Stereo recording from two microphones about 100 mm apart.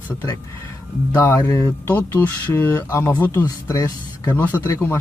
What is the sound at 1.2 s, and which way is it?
Speech, 30° left (ahead or behind).